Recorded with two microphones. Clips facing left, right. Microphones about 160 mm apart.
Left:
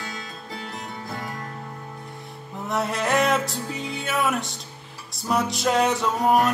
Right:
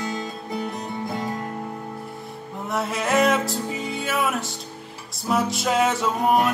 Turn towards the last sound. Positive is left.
turn(degrees=0)  # may be behind; listen again after turning